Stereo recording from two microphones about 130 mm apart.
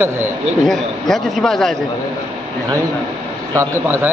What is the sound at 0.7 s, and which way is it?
A man's voice, centre (ahead or behind).